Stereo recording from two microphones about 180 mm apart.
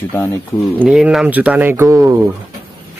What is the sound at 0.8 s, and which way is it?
Speech, 5° right (ahead or behind).